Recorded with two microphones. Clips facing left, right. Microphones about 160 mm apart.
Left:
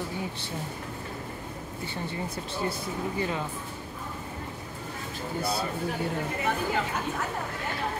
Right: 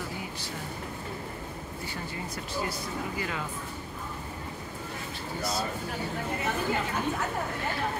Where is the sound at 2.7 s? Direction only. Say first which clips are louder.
Left 3 dB; 25° left (ahead or behind).